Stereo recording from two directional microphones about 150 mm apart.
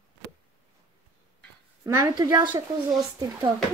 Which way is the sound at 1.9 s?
20° right (ahead or behind).